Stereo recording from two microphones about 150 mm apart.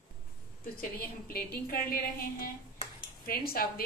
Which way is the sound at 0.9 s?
80° left.